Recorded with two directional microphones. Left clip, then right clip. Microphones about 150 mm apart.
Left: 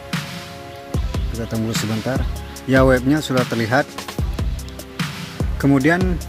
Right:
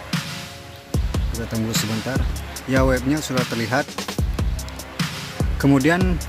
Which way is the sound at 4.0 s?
Centre (ahead or behind).